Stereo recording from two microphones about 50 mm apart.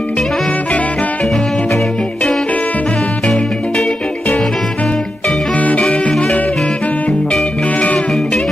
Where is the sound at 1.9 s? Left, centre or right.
Centre.